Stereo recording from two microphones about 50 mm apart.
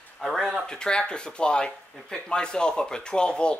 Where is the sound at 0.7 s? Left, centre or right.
Centre.